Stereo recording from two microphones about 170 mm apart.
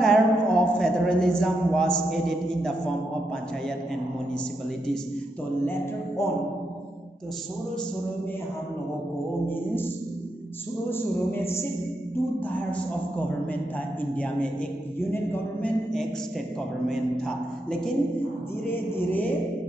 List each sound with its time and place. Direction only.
0.0 s a man's voice: 5° left (ahead or behind)
5.7 s music: 15° left (ahead or behind)
10.9 s music: 15° left (ahead or behind)
14.1 s music: 5° left (ahead or behind)
17.6 s a woman's voice: 5° left (ahead or behind)
18.7 s music: 10° left (ahead or behind)